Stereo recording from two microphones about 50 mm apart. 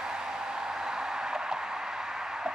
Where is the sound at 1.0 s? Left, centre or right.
Centre.